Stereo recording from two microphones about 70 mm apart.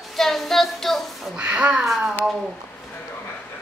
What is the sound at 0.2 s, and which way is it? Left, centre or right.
Child singing, centre.